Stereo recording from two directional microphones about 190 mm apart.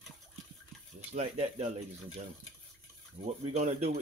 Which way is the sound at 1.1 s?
35° right (ahead or behind).